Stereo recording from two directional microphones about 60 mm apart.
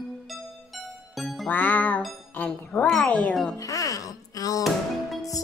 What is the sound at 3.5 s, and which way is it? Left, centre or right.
Music, left.